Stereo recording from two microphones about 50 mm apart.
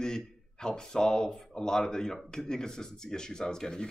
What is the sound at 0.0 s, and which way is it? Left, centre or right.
Speech, centre.